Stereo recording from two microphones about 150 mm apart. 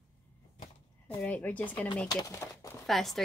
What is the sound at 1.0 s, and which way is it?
Speech, 10° left (ahead or behind).